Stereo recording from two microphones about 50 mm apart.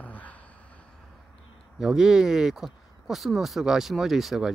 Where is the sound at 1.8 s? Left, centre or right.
Centre.